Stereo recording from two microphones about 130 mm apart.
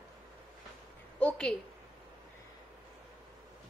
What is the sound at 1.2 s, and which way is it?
Speech, 5° left (ahead or behind).